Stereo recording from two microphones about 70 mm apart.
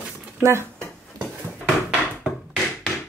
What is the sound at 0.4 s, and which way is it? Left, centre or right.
Speech, right.